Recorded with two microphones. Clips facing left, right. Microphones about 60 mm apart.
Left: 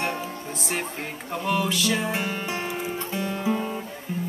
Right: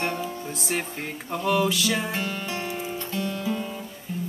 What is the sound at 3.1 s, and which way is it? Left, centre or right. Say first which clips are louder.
Music: left 2 dB; left.